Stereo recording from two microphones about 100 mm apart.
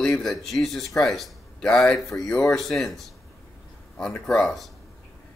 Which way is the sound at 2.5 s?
Centre (ahead or behind).